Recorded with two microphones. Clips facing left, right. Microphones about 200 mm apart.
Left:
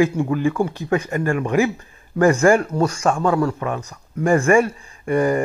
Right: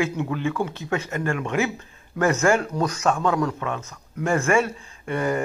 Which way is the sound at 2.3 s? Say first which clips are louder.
Left 5 dB; 15° left (ahead or behind).